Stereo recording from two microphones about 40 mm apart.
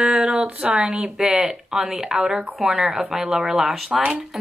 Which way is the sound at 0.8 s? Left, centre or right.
Centre.